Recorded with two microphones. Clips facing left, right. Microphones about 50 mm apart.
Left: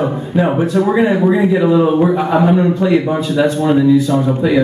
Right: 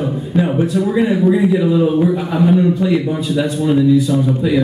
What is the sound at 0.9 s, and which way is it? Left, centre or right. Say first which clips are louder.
A man's voice: left 1 dB; left.